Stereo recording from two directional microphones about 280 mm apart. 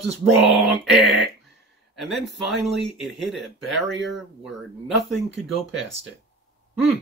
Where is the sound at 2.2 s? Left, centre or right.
Right.